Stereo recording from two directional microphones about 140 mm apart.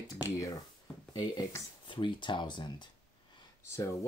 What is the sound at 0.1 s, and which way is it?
Speech, 25° left (ahead or behind).